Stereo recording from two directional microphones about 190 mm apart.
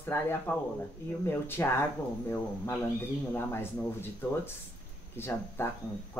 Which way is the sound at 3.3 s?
10° left (ahead or behind).